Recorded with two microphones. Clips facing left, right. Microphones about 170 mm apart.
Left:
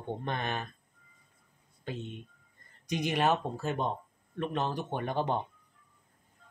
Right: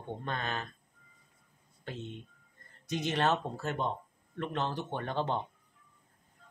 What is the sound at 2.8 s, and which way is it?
Speech, 15° left (ahead or behind).